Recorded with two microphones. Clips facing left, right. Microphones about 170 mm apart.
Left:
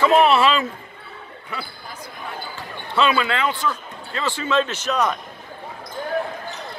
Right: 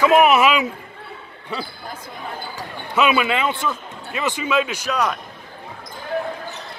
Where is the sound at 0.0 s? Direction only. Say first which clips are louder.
Right 1 dB; 15° right (ahead or behind).